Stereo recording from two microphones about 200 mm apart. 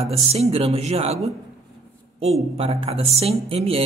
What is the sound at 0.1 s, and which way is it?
Speech, 30° right (ahead or behind).